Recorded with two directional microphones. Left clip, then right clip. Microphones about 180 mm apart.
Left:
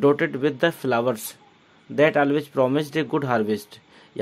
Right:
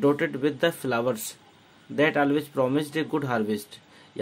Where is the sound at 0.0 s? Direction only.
25° left (ahead or behind).